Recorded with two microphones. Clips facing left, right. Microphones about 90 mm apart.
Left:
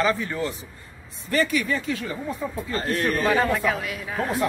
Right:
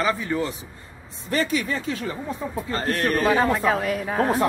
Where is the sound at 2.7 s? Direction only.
40° right (ahead or behind).